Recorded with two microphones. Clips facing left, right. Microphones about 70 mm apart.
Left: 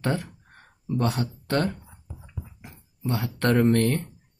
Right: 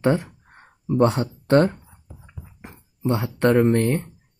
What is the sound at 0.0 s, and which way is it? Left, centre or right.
Speech, right.